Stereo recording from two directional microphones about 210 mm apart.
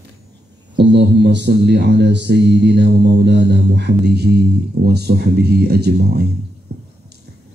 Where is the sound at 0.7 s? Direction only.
55° right (ahead or behind).